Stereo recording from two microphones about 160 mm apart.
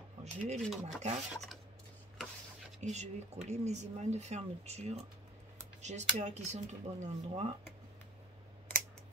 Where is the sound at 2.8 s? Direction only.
45° right (ahead or behind).